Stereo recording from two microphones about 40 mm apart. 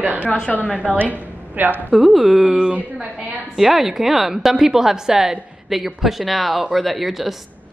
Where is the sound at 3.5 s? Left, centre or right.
Centre.